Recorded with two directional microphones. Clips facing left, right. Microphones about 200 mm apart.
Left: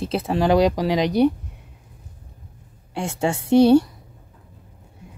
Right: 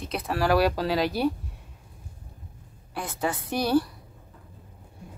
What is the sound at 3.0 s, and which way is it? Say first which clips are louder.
Speech: left 6 dB; 25° left (ahead or behind).